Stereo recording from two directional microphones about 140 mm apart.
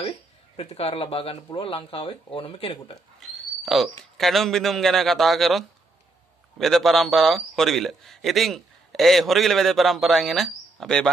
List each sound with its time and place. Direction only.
0.6 s speech: 45° left (ahead or behind)
3.2 s owl: centre (ahead or behind)
4.2 s a man's voice: centre (ahead or behind)